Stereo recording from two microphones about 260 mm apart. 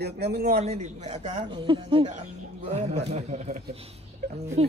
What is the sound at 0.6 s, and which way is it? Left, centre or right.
Speech, right.